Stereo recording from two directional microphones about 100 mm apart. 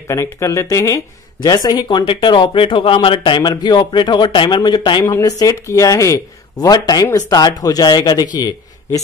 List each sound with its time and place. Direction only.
0.1 s speech: 30° left (ahead or behind)
5.0 s speech: 35° left (ahead or behind)